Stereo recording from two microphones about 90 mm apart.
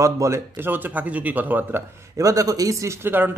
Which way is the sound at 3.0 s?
20° right (ahead or behind).